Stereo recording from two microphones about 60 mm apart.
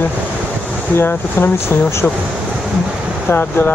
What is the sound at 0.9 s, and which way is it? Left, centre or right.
Speech, left.